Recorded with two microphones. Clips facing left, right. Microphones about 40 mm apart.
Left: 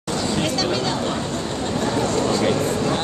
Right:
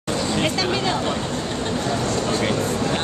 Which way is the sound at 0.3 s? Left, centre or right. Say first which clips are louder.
Even; centre.